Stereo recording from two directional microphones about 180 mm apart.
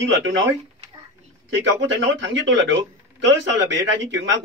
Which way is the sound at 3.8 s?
90° right.